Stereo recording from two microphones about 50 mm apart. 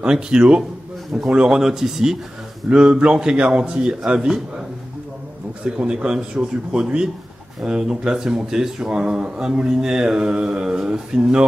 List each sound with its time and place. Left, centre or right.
0.0 s speech: centre
5.6 s speech: centre